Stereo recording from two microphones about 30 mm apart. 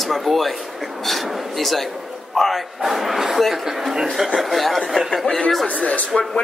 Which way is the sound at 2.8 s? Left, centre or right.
Centre.